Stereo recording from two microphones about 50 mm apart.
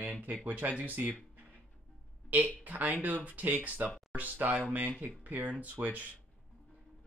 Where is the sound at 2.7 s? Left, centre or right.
Right.